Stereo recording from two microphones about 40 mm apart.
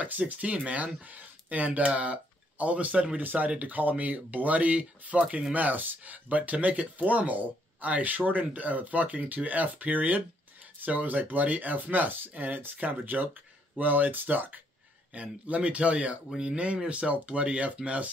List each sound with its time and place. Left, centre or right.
0.0 s speech: right
3.2 s speech: right
15.1 s speech: right
16.3 s speech: centre